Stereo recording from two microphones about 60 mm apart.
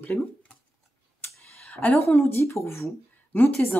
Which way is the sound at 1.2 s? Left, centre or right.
Left.